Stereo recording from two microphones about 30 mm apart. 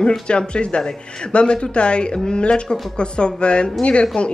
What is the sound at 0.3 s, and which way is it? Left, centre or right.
Speech, left.